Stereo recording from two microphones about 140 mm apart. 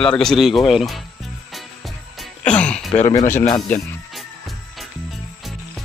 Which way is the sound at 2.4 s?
10° left (ahead or behind).